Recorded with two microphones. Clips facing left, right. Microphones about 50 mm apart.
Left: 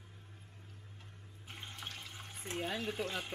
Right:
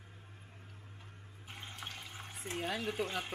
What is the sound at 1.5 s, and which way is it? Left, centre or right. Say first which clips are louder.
Water: right 1 dB; centre.